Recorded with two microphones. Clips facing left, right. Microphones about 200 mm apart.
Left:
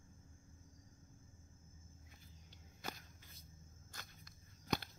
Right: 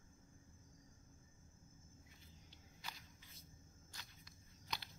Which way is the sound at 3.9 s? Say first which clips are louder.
Left 5 dB; 50° left (ahead or behind).